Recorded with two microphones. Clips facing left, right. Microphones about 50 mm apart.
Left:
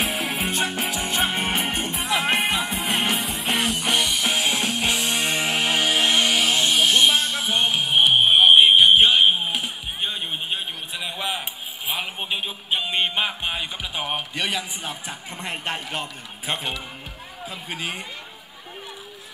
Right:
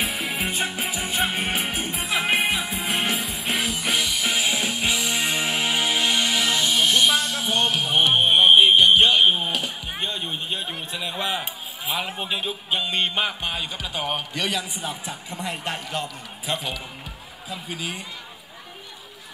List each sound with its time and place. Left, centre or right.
0.5 s music: left
1.2 s music: centre
2.6 s music: left
2.9 s music: centre
3.9 s music: left
7.2 s a sound: left
7.4 s fire alarm: centre
9.2 s a sound: centre
9.5 s music: centre
11.0 s a sound: centre
12.0 s speech: left
14.8 s a man's voice: left